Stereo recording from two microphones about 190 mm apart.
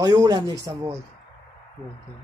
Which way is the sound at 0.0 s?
20° right (ahead or behind).